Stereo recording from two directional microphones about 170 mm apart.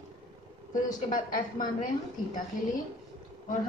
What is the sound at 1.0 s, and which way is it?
Speech, 50° left (ahead or behind).